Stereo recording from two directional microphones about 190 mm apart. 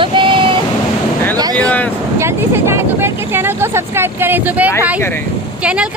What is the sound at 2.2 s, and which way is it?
Speech, 10° right (ahead or behind).